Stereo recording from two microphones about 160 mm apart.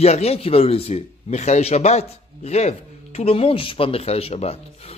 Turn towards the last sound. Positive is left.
turn(degrees=40)  # may be behind; listen again after turning